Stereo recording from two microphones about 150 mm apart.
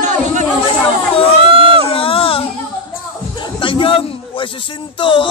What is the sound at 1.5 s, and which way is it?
Crowd, 40° right (ahead or behind).